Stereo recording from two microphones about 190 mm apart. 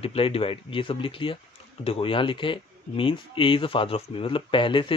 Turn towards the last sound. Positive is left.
turn(degrees=25)  # may be behind; listen again after turning